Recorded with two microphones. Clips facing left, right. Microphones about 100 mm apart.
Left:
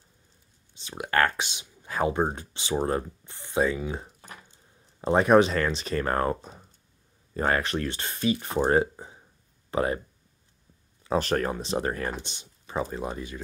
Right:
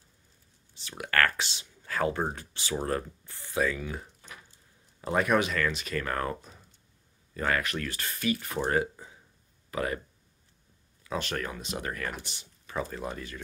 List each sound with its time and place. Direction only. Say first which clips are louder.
0.7 s speech: left 3 dB; 20° left (ahead or behind)
11.1 s speech: left 8 dB; 40° left (ahead or behind); by 13.4 s 20° left (ahead or behind)